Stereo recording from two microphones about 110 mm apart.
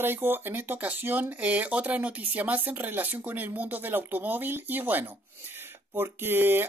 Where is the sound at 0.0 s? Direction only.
20° right (ahead or behind).